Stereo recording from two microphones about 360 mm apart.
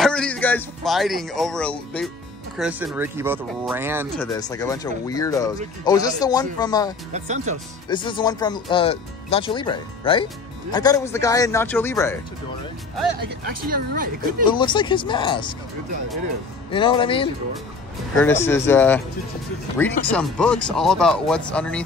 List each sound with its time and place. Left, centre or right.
0.0 s speech: centre
4.2 s speech: centre
7.1 s speech: centre
7.9 s speech: centre
14.5 s speech: centre
16.7 s speech: centre